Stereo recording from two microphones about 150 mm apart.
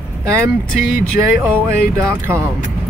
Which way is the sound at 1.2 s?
25° right (ahead or behind).